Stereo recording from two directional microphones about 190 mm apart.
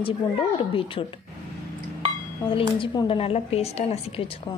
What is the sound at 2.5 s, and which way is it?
A woman's voice, 25° left (ahead or behind).